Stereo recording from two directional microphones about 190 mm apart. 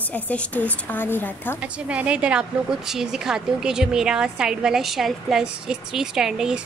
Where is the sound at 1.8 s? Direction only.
5° right (ahead or behind).